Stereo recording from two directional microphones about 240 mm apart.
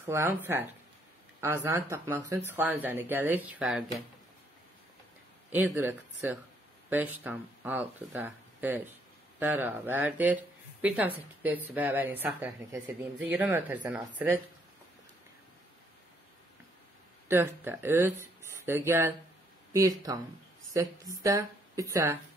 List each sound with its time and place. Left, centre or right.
0.0 s speech: centre
5.5 s speech: centre
17.3 s speech: centre